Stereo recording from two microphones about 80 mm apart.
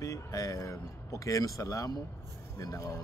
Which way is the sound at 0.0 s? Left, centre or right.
Left.